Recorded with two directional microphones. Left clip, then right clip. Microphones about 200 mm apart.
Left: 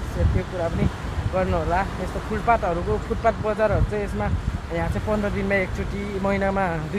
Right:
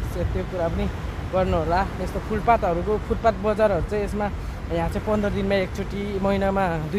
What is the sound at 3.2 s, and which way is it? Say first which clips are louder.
Speech: right 1 dB; 15° right (ahead or behind).